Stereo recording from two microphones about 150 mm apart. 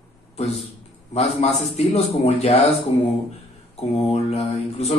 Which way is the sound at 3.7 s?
45° left (ahead or behind).